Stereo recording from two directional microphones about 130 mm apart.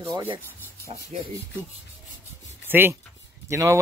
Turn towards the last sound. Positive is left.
turn(degrees=-20)  # may be behind; listen again after turning